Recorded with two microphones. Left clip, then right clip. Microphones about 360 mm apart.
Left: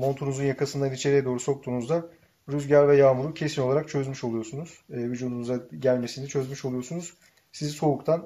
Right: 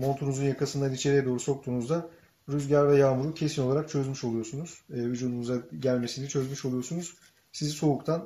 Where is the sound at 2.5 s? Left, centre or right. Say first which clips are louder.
Left 4 dB; centre.